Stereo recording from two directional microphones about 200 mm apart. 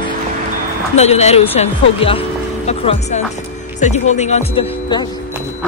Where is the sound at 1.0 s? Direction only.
35° left (ahead or behind).